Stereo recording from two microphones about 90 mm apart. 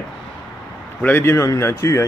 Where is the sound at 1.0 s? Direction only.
25° left (ahead or behind).